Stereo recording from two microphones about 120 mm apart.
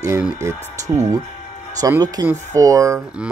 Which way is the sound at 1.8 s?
30° right (ahead or behind).